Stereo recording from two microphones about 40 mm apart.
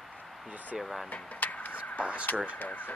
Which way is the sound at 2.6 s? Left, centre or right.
Left.